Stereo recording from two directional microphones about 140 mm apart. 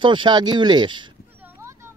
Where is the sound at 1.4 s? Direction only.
20° right (ahead or behind).